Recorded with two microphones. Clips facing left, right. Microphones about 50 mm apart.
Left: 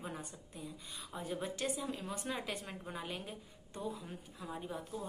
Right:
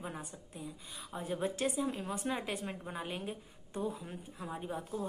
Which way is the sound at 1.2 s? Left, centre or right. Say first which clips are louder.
Right 4 dB; right.